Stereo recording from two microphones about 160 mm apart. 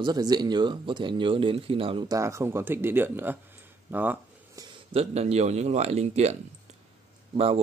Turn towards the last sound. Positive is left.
turn(degrees=-40)  # may be behind; listen again after turning